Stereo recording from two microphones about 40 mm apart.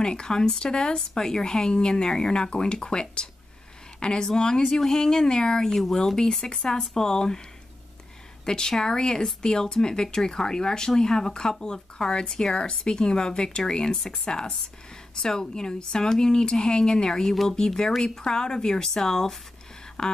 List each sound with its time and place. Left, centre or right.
0.0 s speech: centre
5.8 s speech: centre
8.5 s speech: centre
12.5 s speech: left